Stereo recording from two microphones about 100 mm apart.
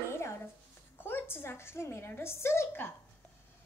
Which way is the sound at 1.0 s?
20° left (ahead or behind).